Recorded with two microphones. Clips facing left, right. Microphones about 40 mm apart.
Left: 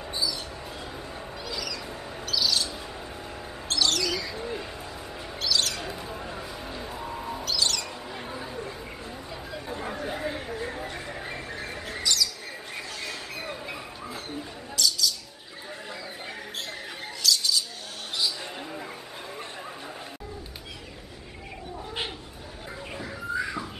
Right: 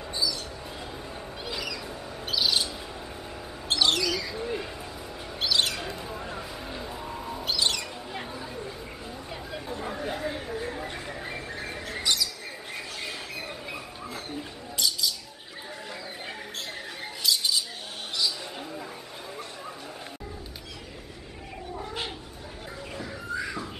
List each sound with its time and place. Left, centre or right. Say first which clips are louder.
0.1 s basketball bounce: right 1 dB; centre
1.5 s cat: right 1 dB; right
2.2 s bird: right 1 dB; right
4.0 s bird: right 1 dB; centre
5.4 s bird: right 1 dB; right
5.8 s music: even; centre
7.4 s squawk: right 1 dB; right
8.3 s chatter: left 1 dB; centre
11.1 s a sound: even; centre
12.0 s a sound: even; right
13.4 s a sound: left 1 dB; centre
14.8 s bird: left 2 dB; right
17.2 s bird: left 1 dB; right
22.9 s a sound: left 3 dB; centre